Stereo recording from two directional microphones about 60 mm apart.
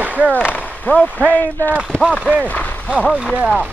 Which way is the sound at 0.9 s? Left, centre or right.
Left.